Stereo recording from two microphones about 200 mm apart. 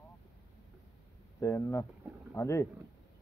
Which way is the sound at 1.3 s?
15° left (ahead or behind).